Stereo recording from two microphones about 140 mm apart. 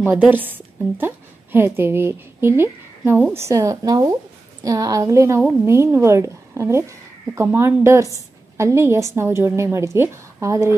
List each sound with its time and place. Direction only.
0.1 s a woman's voice: 10° right (ahead or behind)